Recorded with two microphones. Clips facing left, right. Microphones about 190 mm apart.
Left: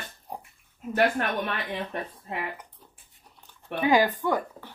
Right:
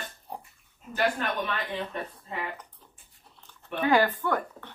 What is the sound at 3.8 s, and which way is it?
Speech, 15° left (ahead or behind).